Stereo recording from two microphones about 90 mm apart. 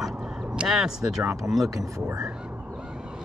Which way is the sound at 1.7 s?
40° right (ahead or behind).